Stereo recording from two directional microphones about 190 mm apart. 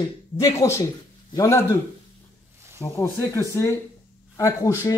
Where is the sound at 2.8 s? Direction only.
15° left (ahead or behind).